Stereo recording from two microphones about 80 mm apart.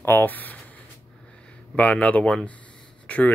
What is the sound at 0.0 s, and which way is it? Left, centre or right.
Speech, left.